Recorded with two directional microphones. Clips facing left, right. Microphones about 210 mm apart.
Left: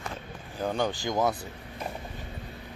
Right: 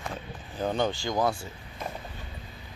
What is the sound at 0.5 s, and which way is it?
Speech, 10° left (ahead or behind).